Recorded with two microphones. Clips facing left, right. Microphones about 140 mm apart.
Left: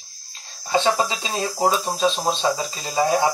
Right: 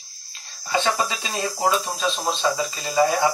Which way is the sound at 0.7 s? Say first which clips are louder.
Left 3 dB; 25° left (ahead or behind).